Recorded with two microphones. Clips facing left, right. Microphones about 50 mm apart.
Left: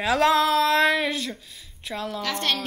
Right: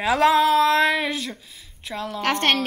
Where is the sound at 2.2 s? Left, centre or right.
Right.